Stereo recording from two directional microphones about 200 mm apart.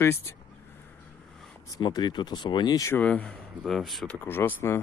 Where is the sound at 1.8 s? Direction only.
20° left (ahead or behind); by 4.2 s centre (ahead or behind).